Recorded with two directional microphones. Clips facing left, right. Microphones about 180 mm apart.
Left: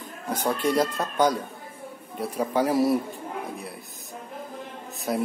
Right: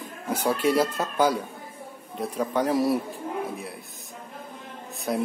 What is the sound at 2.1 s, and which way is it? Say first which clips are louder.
Speech: left 1 dB; 5° left (ahead or behind).